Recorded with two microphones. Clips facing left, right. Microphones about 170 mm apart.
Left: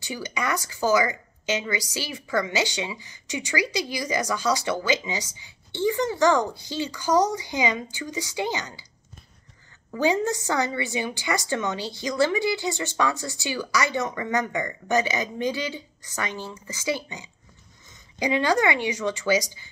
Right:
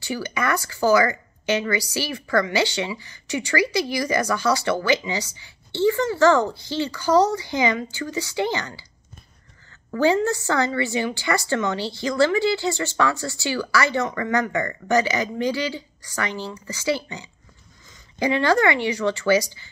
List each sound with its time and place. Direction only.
0.0 s a woman's voice: 20° left (ahead or behind)
9.9 s a woman's voice: 15° left (ahead or behind)